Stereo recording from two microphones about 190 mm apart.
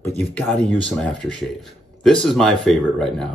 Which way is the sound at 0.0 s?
10° left (ahead or behind).